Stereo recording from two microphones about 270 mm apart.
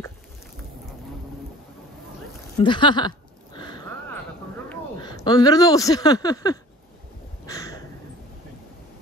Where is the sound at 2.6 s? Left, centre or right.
Centre.